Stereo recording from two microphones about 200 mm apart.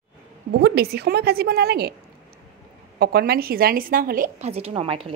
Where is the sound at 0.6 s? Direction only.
50° right (ahead or behind).